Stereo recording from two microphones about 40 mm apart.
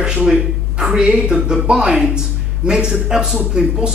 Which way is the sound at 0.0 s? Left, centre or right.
Centre.